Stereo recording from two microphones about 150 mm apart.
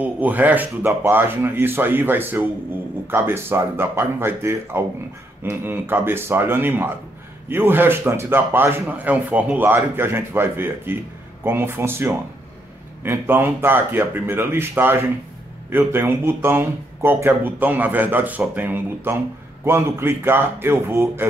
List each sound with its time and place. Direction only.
0.0 s speech: 10° right (ahead or behind)